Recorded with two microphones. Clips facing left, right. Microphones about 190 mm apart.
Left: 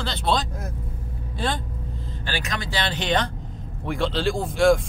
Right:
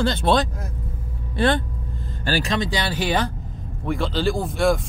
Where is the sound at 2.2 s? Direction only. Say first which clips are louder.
Right 7 dB; 40° right (ahead or behind).